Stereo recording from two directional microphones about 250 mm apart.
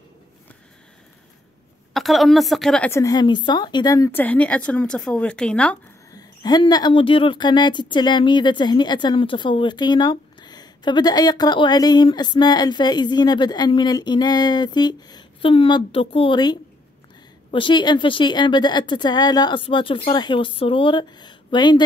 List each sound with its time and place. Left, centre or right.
2.0 s a woman's voice: centre
6.1 s a woman's voice: centre